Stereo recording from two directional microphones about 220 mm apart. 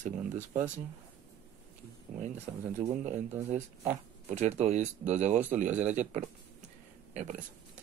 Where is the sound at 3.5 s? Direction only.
30° right (ahead or behind).